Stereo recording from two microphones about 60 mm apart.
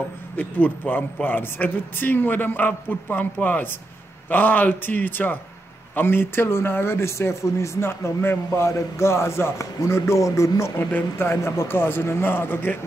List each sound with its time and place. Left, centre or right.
0.4 s speech: left
8.5 s speech: left
10.9 s speech: left